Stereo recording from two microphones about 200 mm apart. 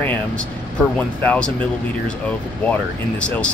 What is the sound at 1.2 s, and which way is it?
Speech, 5° left (ahead or behind).